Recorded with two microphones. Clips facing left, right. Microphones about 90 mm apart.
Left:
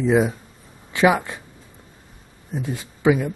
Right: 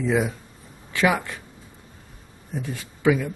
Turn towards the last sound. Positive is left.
turn(degrees=20)  # may be behind; listen again after turning